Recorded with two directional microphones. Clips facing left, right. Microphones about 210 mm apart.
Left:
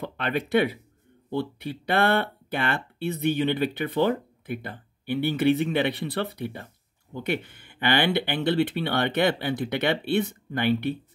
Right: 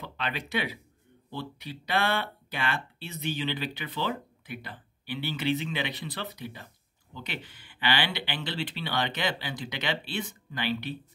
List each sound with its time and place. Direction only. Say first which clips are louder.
0.0 s speech: left 7 dB; 55° left (ahead or behind)